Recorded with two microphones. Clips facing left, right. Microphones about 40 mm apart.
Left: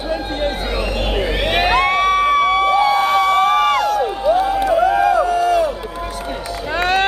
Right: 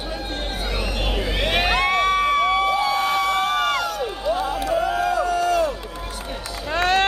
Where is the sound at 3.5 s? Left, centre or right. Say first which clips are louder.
Left 7 dB; centre.